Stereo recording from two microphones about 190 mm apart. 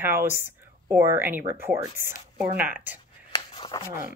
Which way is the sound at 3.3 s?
25° left (ahead or behind).